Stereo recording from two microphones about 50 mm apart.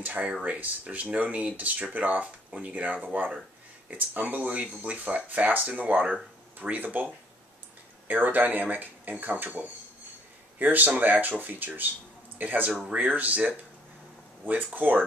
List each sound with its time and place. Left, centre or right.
0.0 s speech: right
8.1 s speech: right